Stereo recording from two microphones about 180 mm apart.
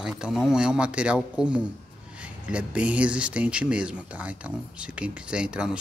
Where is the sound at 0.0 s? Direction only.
5° right (ahead or behind).